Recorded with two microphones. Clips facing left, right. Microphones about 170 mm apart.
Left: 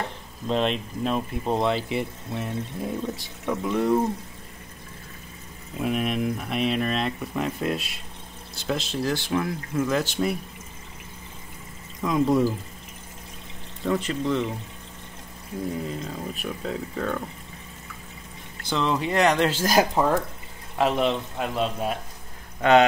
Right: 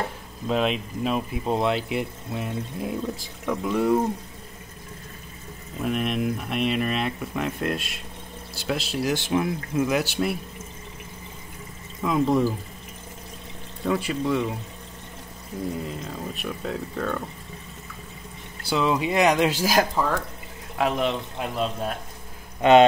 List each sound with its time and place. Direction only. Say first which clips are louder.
0.5 s speech: even; 5° right (ahead or behind)
5.8 s speech: even; centre (ahead or behind)
9.0 s speech: right 3 dB; 20° right (ahead or behind)
12.0 s speech: even; centre (ahead or behind)
13.8 s speech: even; 10° right (ahead or behind)
16.0 s speech: even; centre (ahead or behind)
18.7 s speech: right 2 dB; 10° right (ahead or behind)
20.0 s speech: left 3 dB; 20° left (ahead or behind)
20.7 s speech: left 1 dB; centre (ahead or behind)
22.6 s speech: right 3 dB; 20° right (ahead or behind)